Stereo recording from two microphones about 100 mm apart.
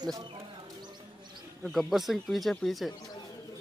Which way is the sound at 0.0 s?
45° right (ahead or behind).